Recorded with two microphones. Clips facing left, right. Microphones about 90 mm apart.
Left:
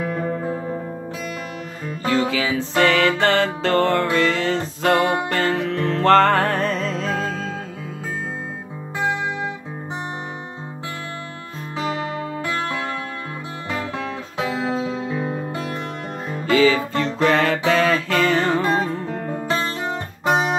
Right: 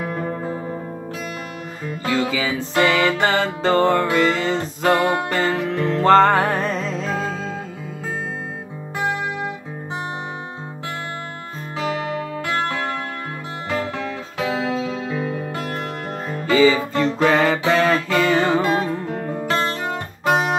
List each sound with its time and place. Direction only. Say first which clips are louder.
2.0 s music: left 1 dB; 5° right (ahead or behind)
5.5 s music: even; 10° right (ahead or behind)
14.7 s music: even; 30° left (ahead or behind)
16.4 s music: right 1 dB; 5° right (ahead or behind)